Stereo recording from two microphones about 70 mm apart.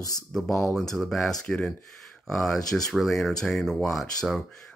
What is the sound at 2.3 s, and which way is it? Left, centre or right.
Speech, centre.